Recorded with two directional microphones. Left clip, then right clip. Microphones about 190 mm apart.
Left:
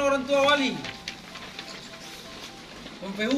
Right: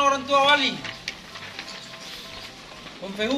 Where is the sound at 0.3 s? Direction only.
55° left (ahead or behind).